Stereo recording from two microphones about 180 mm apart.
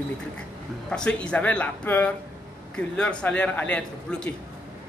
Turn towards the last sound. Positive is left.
turn(degrees=5)  # may be behind; listen again after turning